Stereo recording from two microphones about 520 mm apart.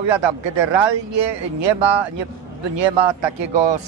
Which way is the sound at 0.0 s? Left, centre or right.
Right.